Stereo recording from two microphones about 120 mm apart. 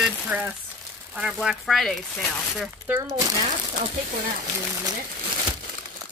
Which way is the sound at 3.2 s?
30° right (ahead or behind).